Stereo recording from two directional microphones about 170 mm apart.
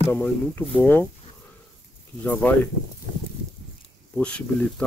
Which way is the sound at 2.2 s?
10° left (ahead or behind).